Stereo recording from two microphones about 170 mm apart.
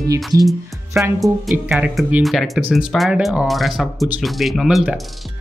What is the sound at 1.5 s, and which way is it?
Speech, 10° right (ahead or behind).